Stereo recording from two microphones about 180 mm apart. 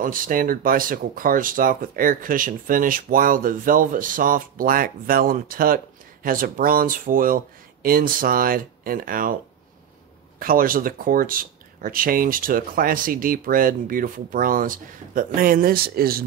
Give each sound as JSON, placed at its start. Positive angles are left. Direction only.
{"t": 0.0, "sound": "speech", "side_deg": -50}
{"t": 10.4, "sound": "speech", "side_deg": -50}